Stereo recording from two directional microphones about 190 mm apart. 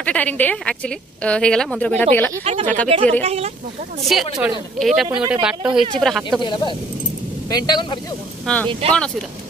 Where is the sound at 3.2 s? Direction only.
30° right (ahead or behind).